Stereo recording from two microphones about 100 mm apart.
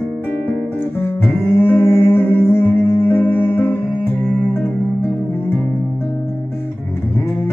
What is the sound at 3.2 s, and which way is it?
Music, 20° left (ahead or behind).